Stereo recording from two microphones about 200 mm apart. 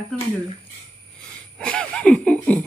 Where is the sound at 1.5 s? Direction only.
5° left (ahead or behind).